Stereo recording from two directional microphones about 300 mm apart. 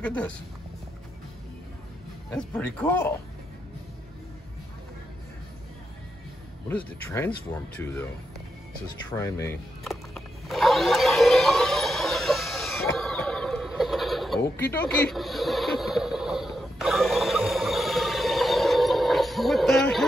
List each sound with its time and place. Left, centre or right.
0.0 s speech: centre
2.5 s speech: centre
6.7 s speech: centre
9.1 s music: centre